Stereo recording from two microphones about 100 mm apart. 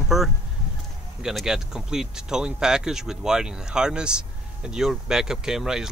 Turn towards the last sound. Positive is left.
turn(degrees=-5)  # may be behind; listen again after turning